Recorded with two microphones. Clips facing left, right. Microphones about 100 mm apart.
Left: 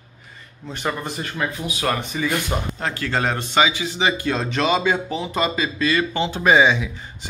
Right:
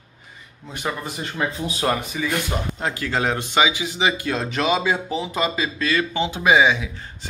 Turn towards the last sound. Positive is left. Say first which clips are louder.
# left 1 dB
turn(degrees=-5)  # may be behind; listen again after turning